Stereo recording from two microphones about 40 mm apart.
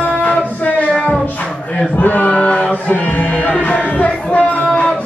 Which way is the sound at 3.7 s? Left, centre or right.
Left.